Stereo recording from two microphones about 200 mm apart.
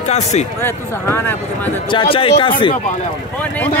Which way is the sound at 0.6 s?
10° left (ahead or behind).